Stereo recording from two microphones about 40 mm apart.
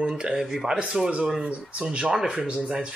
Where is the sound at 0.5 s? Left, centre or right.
Centre.